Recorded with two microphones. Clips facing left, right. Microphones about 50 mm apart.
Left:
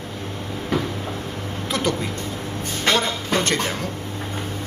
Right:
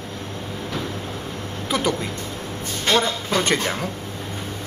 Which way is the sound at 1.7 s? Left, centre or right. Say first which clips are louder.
Right 1 dB; centre.